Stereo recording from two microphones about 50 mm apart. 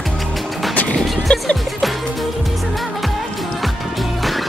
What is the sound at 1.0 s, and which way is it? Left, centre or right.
Music, centre.